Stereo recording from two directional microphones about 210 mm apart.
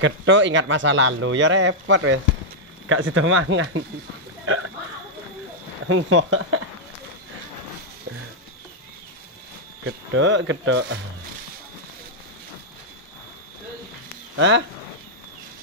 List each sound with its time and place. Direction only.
0.0 s a man's voice: 65° right (ahead or behind)
4.5 s hiccup: 90° right
5.9 s speech: 65° right (ahead or behind)
9.8 s a man's voice: 65° right (ahead or behind)
14.3 s speech: 60° right (ahead or behind)